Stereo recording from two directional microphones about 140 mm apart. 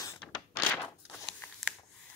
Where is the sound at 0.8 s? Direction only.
15° left (ahead or behind).